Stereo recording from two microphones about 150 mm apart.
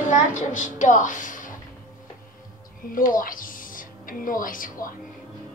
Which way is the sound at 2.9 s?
65° left (ahead or behind).